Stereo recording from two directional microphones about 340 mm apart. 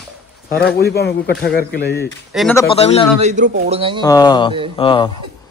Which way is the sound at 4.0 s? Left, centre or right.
Centre.